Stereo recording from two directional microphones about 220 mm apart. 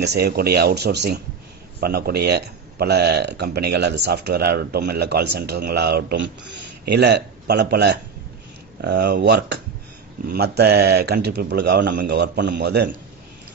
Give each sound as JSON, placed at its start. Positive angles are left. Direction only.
{"t": 0.0, "sound": "speech", "side_deg": -50}